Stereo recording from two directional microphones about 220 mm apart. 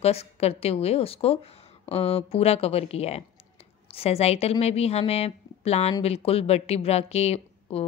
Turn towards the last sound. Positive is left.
turn(degrees=25)  # may be behind; listen again after turning